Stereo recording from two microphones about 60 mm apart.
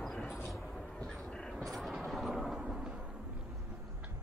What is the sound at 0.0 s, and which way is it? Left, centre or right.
Vehicle, centre.